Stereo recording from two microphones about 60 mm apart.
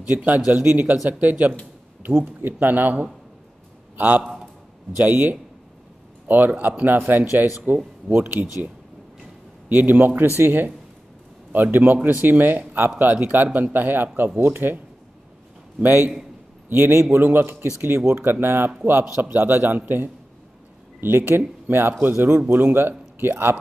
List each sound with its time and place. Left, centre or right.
0.0 s speech: right
3.9 s a sound: right
4.9 s a man's voice: right
9.7 s a man's voice: right
15.8 s a man's voice: right